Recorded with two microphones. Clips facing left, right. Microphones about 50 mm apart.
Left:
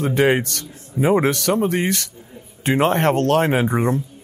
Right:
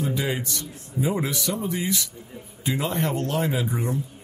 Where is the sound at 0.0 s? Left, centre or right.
Left.